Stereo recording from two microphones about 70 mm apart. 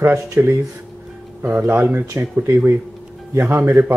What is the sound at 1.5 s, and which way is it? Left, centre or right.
Speech, right.